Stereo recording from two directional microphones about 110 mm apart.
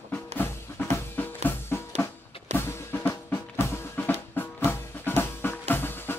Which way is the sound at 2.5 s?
20° left (ahead or behind).